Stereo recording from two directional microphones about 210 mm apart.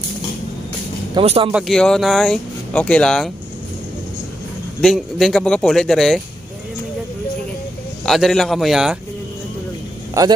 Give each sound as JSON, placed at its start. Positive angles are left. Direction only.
{"t": 1.1, "sound": "speech", "side_deg": -25}
{"t": 1.5, "sound": "speech", "side_deg": 0}
{"t": 4.8, "sound": "speech", "side_deg": 0}
{"t": 8.0, "sound": "speech", "side_deg": 0}